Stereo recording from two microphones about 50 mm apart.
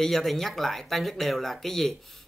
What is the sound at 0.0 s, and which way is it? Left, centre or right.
Speech, centre.